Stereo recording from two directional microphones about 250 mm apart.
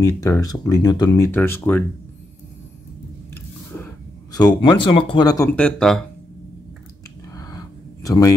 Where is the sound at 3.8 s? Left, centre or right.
Centre.